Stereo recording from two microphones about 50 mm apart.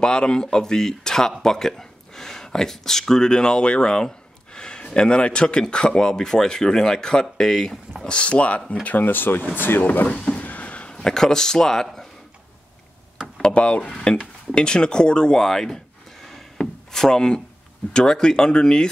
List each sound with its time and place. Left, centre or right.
0.0 s speech: centre
8.8 s speech: left
10.1 s a sound: left
10.4 s a sound: left
11.0 s speech: centre
13.4 s speech: left